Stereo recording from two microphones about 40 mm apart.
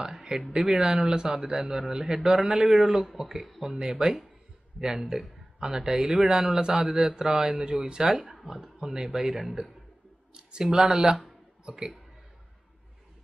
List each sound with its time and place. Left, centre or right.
0.6 s speech: centre
3.7 s speech: centre
10.3 s speech: right
11.2 s a sound: centre